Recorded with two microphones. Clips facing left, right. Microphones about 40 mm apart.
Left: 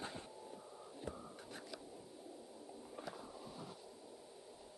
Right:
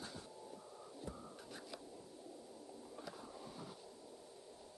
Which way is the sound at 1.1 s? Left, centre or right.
Left.